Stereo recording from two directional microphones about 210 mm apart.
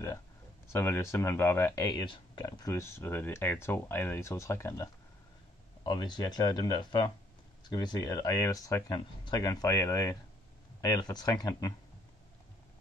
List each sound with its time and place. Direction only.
0.7 s speech: 10° left (ahead or behind)
5.9 s speech: 20° left (ahead or behind)